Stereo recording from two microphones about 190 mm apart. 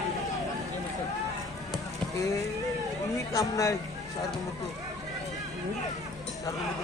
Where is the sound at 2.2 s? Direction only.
15° left (ahead or behind).